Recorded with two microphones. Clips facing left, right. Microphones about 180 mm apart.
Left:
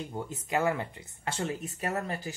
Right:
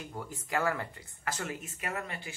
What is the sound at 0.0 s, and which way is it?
Speech, 25° left (ahead or behind).